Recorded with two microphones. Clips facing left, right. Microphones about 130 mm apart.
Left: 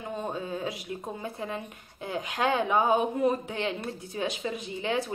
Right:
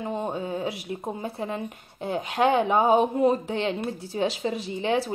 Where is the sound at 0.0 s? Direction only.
25° right (ahead or behind).